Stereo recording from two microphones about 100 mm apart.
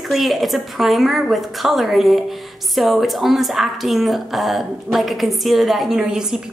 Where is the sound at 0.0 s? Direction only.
Centre (ahead or behind).